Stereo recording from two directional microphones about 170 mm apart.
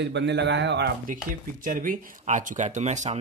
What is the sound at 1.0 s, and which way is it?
Speech, 50° right (ahead or behind).